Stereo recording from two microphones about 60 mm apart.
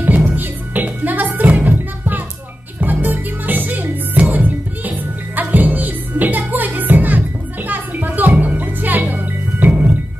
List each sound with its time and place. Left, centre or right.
0.0 s music: right